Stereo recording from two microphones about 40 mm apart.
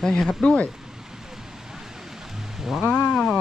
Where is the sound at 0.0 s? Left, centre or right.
Centre.